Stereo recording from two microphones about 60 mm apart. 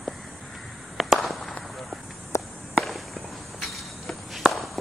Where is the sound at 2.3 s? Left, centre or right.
Left.